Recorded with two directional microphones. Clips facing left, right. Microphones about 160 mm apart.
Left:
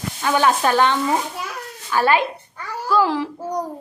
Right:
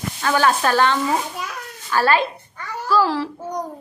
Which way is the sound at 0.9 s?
Centre (ahead or behind).